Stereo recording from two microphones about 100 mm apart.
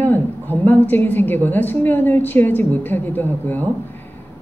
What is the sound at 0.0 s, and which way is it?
A woman's voice, 20° left (ahead or behind).